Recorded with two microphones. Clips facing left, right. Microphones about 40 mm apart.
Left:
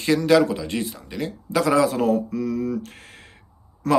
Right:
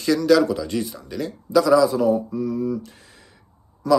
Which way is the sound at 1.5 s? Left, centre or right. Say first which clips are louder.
Right 3 dB; left.